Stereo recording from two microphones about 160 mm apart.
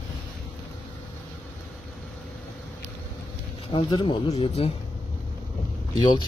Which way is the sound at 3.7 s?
30° left (ahead or behind).